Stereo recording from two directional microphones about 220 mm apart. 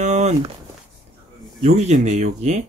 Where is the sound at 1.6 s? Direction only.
30° right (ahead or behind).